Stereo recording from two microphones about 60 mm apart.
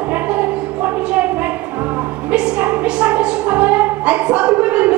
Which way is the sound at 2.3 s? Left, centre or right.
Right.